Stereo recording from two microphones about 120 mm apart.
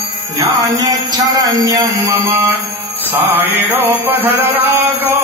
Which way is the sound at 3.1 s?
15° right (ahead or behind).